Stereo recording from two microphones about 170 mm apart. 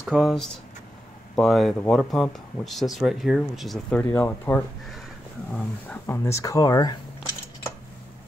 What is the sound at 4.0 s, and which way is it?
Speech, 15° left (ahead or behind).